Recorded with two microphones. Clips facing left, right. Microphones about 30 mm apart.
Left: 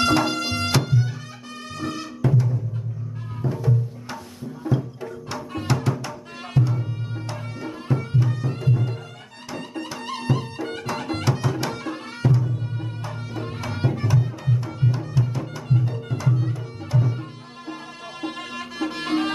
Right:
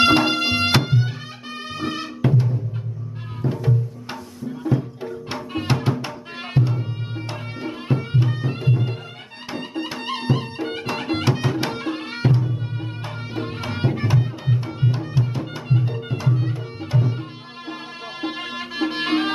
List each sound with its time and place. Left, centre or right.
0.0 s music: right
3.6 s music: right
18.2 s music: right